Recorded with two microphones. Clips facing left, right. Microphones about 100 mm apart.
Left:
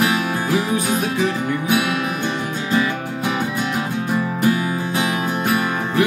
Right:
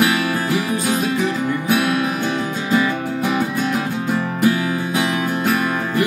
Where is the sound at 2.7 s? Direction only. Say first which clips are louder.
Right 2 dB; 5° right (ahead or behind).